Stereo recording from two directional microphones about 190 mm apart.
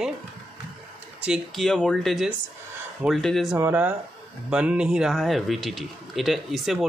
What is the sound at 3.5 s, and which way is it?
A man's voice, 10° right (ahead or behind).